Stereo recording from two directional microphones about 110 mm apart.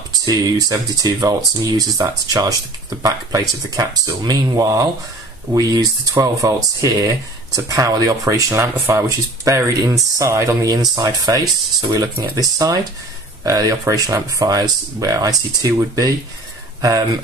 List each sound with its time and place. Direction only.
0.3 s speech: 35° right (ahead or behind)